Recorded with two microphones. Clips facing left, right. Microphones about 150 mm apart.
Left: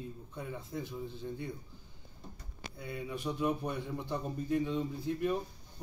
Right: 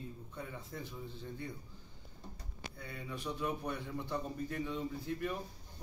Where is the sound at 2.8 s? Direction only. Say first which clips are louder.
Left 6 dB; 15° left (ahead or behind).